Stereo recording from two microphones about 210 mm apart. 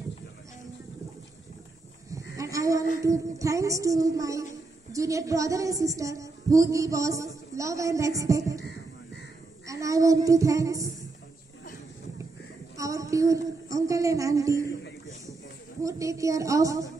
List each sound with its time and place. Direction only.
2.0 s a sound: 15° right (ahead or behind)
4.9 s a woman's voice: 15° right (ahead or behind)
9.7 s a woman's voice: 15° right (ahead or behind)
12.7 s a woman's voice: 15° right (ahead or behind)
15.8 s a woman's voice: 15° right (ahead or behind)